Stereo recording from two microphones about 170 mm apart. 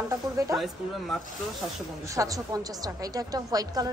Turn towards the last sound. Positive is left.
turn(degrees=-20)  # may be behind; listen again after turning